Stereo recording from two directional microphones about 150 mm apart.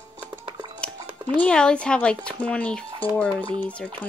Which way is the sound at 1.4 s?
5° left (ahead or behind).